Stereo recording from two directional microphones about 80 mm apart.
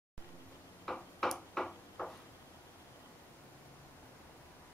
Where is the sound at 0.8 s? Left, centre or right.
Centre.